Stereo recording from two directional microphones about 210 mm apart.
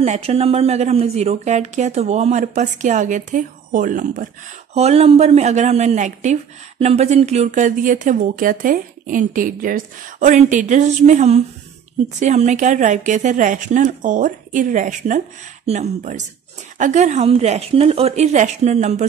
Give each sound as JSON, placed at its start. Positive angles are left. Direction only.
{"t": 0.0, "sound": "speech", "side_deg": -30}